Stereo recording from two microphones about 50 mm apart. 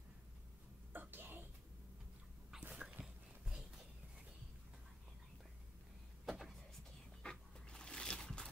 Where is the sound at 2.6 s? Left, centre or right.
Right.